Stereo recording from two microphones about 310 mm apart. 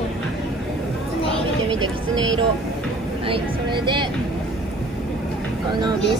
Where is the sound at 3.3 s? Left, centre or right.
Centre.